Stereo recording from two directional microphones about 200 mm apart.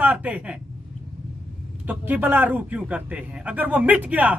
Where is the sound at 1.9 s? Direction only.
10° right (ahead or behind).